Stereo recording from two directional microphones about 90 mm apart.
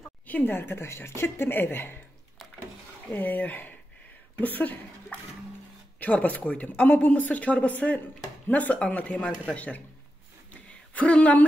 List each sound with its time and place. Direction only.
0.3 s a woman's voice: 25° left (ahead or behind)
3.1 s a woman's voice: 20° left (ahead or behind)
5.9 s speech: 15° left (ahead or behind)
10.5 s a sound: 15° left (ahead or behind)